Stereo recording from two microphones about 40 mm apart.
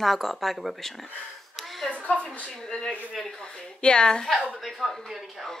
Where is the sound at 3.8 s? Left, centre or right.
Left; by 5.1 s centre.